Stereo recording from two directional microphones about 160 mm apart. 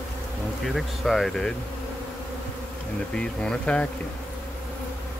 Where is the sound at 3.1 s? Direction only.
5° left (ahead or behind).